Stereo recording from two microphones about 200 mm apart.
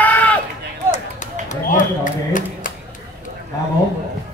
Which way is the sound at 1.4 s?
40° left (ahead or behind).